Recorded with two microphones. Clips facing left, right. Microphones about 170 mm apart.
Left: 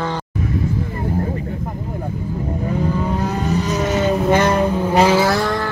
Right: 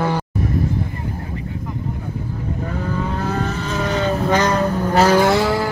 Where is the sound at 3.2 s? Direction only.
15° left (ahead or behind); by 5.6 s 5° right (ahead or behind).